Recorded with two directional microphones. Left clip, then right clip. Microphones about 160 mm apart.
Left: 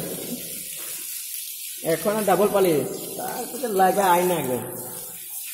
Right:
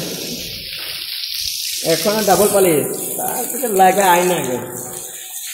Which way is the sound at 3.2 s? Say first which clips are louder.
Right 7 dB; centre (ahead or behind).